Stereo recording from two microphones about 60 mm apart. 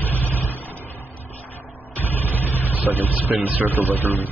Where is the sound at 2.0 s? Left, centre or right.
Left.